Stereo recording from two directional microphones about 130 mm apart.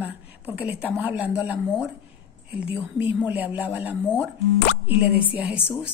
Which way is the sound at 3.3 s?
10° right (ahead or behind).